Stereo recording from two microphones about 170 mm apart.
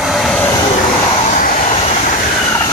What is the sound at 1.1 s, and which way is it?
Vehicle, 45° left (ahead or behind).